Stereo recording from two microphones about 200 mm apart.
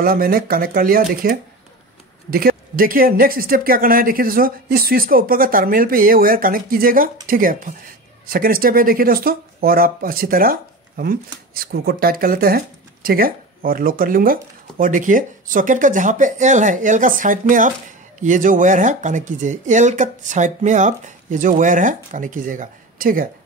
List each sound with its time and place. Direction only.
0.0 s speech: 45° right (ahead or behind)